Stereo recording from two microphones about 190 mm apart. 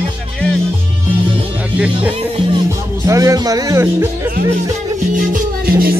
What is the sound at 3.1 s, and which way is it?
Speech, 15° right (ahead or behind).